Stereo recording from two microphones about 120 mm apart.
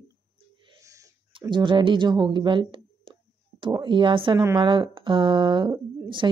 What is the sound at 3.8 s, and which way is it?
A woman's voice, 40° right (ahead or behind).